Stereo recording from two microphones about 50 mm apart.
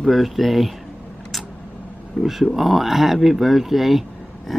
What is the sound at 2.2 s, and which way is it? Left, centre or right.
Speech, centre.